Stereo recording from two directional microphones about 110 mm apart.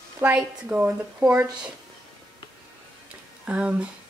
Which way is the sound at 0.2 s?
20° right (ahead or behind).